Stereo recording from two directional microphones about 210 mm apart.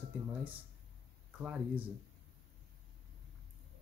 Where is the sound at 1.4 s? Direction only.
5° right (ahead or behind).